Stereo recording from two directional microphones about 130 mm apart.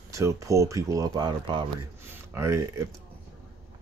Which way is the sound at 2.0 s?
20° right (ahead or behind).